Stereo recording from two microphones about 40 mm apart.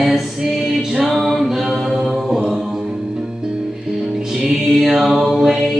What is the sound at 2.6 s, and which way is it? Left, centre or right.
Music, centre.